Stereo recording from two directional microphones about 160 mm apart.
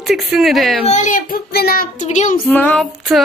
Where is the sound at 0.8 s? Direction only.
50° left (ahead or behind); by 2.0 s 70° left (ahead or behind).